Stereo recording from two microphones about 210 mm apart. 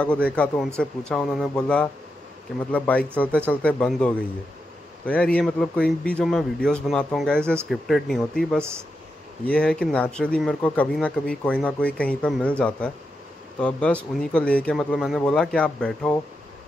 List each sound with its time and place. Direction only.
0.0 s a man's voice: 5° left (ahead or behind)
8.5 s speech: 10° right (ahead or behind)
9.5 s a man's voice: 5° left (ahead or behind)